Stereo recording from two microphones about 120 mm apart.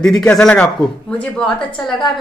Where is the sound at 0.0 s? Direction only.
5° left (ahead or behind).